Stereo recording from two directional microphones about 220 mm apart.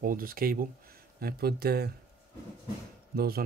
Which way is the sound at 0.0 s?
40° right (ahead or behind).